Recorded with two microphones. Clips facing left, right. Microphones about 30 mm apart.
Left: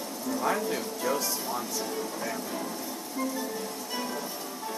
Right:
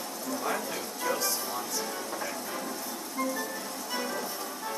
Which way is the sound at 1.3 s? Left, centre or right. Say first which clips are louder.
Left 1 dB; centre.